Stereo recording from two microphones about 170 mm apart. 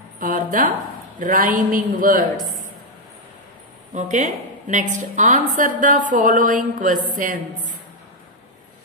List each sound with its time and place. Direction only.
0.2 s a woman's voice: 55° right (ahead or behind)
3.9 s a woman's voice: 45° right (ahead or behind)